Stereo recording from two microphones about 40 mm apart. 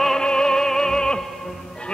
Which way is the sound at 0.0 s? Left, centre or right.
Centre.